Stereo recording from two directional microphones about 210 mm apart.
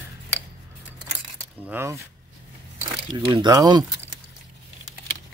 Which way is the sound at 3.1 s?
20° right (ahead or behind).